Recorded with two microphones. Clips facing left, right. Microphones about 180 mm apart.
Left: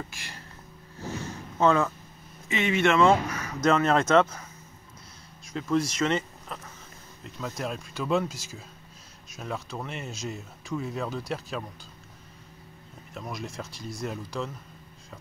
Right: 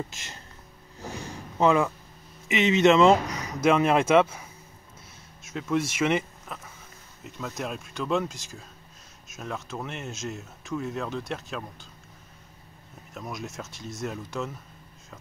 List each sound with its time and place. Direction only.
0.1 s a sound: 20° right (ahead or behind)
1.6 s speech: 15° right (ahead or behind)
13.1 s speech: centre (ahead or behind)